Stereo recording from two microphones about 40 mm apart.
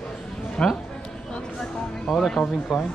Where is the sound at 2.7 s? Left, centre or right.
Centre.